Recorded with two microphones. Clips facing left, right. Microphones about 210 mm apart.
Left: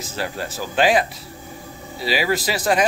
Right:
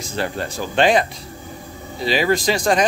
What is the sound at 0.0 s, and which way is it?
Speech, 5° left (ahead or behind).